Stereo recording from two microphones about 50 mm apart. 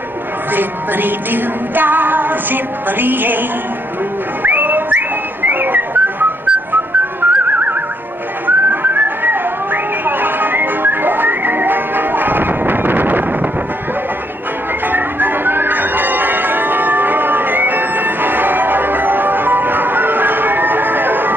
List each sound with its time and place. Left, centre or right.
0.5 s music: right
4.4 s whistling: right
14.9 s music: right